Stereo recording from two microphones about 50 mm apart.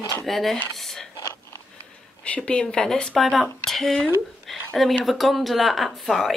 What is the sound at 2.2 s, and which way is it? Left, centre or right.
Speech, left.